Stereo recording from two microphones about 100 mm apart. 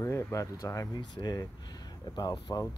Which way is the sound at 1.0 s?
45° left (ahead or behind).